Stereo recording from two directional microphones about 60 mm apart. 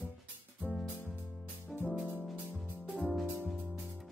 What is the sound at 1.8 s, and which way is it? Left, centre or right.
Music, left.